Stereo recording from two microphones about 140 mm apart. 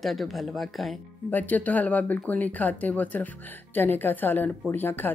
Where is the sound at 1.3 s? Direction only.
10° left (ahead or behind).